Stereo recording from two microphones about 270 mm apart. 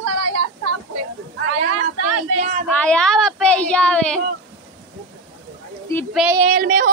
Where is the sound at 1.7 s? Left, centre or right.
Right.